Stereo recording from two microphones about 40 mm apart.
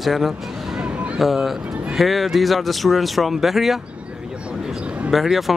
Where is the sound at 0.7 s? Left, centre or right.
Right.